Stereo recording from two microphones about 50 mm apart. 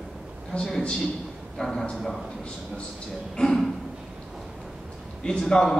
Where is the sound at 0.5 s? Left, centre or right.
Left.